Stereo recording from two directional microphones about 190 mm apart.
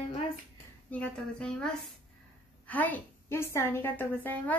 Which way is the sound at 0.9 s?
5° left (ahead or behind).